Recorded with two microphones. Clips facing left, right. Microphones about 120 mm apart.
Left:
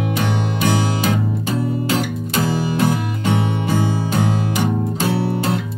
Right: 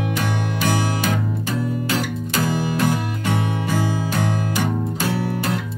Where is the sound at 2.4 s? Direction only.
25° left (ahead or behind).